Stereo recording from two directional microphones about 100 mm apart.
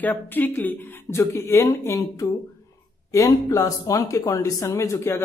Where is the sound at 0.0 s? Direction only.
20° left (ahead or behind).